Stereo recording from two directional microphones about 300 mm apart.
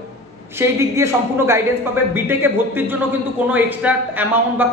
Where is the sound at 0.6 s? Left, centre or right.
Centre.